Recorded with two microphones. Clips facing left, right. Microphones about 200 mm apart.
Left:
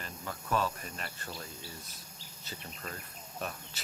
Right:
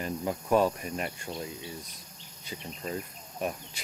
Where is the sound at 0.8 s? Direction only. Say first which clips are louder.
Right 9 dB; 10° right (ahead or behind).